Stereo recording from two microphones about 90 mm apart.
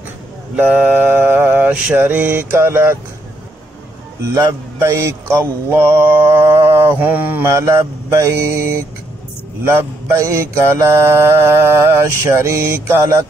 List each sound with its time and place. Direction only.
0.6 s mantra: 20° right (ahead or behind)
4.3 s mantra: 35° right (ahead or behind)
7.0 s mantra: 20° right (ahead or behind)
7.4 s mantra: 35° right (ahead or behind)